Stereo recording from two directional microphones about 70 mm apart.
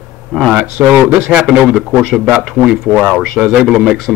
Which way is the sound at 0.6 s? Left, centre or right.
Centre.